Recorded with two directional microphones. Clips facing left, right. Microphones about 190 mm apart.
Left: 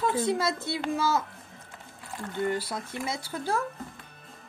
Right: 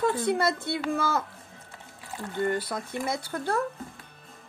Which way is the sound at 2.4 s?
55° right (ahead or behind).